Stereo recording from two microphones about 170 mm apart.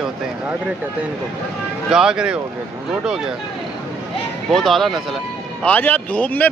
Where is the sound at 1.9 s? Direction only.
5° right (ahead or behind).